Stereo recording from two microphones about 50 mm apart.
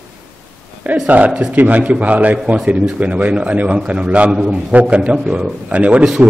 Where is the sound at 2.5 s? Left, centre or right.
Centre.